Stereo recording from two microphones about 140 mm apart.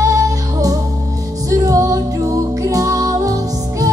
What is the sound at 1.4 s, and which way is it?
Music, 25° right (ahead or behind).